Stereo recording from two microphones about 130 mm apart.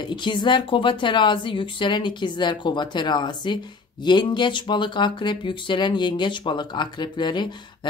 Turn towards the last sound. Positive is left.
turn(degrees=35)  # may be behind; listen again after turning